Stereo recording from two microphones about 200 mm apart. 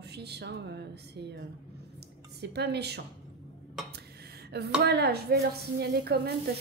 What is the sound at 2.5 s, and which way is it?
Speech, 55° right (ahead or behind).